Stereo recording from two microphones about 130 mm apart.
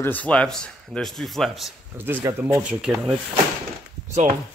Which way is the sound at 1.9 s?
15° right (ahead or behind).